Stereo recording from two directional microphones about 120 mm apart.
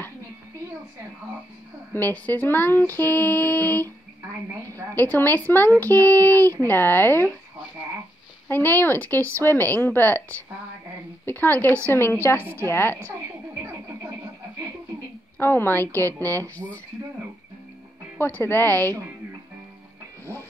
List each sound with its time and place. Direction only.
2.0 s speech: 15° left (ahead or behind)
4.9 s speech: 15° left (ahead or behind)
8.5 s speech: 15° left (ahead or behind)
11.2 s a woman's voice: 15° left (ahead or behind)
15.3 s speech: 20° left (ahead or behind)
18.1 s speech: 15° left (ahead or behind)